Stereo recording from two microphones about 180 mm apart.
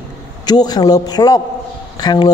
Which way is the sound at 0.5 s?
20° left (ahead or behind).